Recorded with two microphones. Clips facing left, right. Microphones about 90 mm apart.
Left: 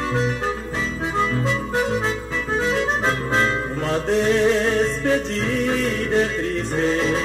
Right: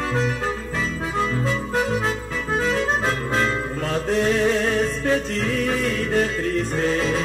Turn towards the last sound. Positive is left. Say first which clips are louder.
# left 1 dB
turn(degrees=25)  # may be behind; listen again after turning